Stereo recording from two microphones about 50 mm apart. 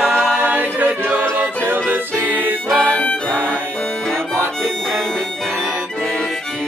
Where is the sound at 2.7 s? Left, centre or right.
Left.